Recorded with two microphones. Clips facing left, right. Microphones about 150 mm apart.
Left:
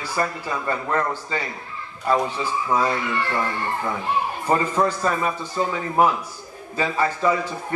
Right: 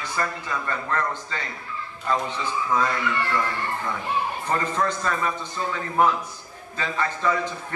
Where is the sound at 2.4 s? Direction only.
35° left (ahead or behind).